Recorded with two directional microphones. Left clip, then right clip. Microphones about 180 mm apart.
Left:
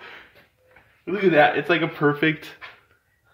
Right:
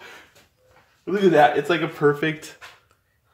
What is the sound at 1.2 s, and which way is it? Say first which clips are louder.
Speech: right 1 dB; 15° left (ahead or behind).